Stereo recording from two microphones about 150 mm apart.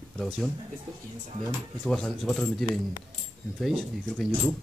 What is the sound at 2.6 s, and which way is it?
Speech, 25° left (ahead or behind).